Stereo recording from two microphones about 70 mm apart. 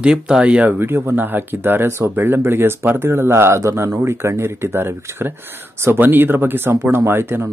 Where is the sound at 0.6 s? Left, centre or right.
Right.